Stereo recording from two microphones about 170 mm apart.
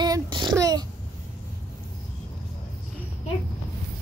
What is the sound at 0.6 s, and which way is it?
Babbling, 20° right (ahead or behind).